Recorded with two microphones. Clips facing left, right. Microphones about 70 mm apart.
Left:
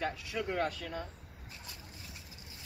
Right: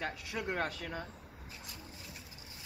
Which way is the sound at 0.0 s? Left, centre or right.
Right.